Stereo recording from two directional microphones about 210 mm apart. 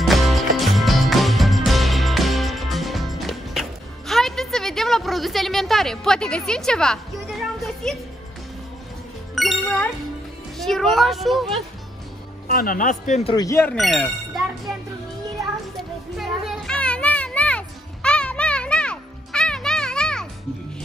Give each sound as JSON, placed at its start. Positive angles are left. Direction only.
{"t": 0.0, "sound": "music", "side_deg": 0}
{"t": 4.1, "sound": "a sound", "side_deg": 0}
{"t": 9.3, "sound": "music", "side_deg": 0}
{"t": 10.6, "sound": "speech", "side_deg": 0}
{"t": 12.4, "sound": "a man's voice", "side_deg": 45}
{"t": 13.4, "sound": "speech", "side_deg": 10}
{"t": 15.7, "sound": "a sound", "side_deg": 0}